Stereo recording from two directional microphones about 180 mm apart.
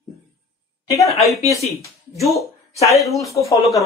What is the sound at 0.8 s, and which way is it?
Speech, 20° left (ahead or behind).